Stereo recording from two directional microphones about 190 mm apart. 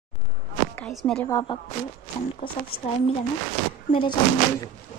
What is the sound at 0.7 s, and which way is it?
Speech, 5° left (ahead or behind).